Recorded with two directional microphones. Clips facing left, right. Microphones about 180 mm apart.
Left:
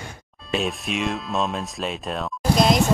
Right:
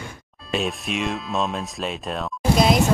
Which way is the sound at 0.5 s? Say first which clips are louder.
Even; centre (ahead or behind).